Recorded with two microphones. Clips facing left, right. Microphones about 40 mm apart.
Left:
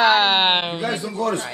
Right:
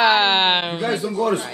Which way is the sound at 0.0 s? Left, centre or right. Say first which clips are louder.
Even; centre.